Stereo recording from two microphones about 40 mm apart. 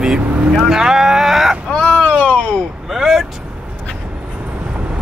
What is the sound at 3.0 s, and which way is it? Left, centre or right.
Speech, centre.